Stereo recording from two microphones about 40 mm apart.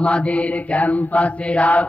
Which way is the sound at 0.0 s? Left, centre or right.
Left.